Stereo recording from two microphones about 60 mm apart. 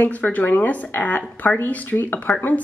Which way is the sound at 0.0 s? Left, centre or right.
Left.